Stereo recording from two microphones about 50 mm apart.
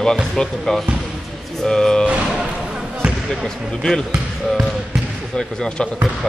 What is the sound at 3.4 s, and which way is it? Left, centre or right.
Speech, centre.